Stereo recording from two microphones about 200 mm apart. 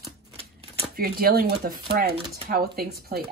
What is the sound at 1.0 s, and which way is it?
Speech, 50° right (ahead or behind).